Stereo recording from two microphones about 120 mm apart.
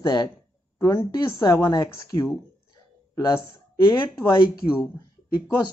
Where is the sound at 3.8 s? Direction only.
40° left (ahead or behind).